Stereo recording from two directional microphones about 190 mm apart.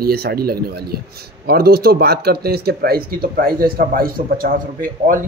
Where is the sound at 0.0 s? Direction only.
55° right (ahead or behind).